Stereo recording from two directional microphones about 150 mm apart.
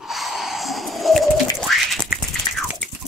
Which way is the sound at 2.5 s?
25° left (ahead or behind).